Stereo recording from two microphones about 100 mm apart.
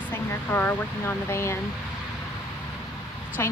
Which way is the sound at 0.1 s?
20° left (ahead or behind).